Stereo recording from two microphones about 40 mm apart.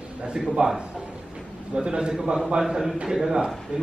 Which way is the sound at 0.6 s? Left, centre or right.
Right.